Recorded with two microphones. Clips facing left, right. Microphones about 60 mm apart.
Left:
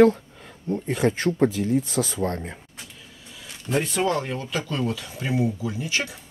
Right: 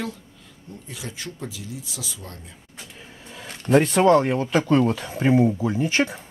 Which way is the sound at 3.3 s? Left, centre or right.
Right.